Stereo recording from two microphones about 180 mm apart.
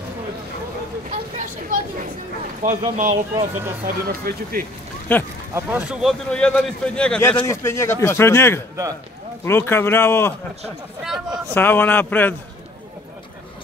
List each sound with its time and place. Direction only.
1.1 s a sound: 40° right (ahead or behind)
2.6 s speech: 15° right (ahead or behind)
3.8 s speech: 55° right (ahead or behind)
5.1 s speech: 10° left (ahead or behind)
5.5 s speech: 10° right (ahead or behind); by 10.3 s 15° left (ahead or behind)
11.1 s speech: 5° right (ahead or behind)
11.5 s speech: 10° left (ahead or behind)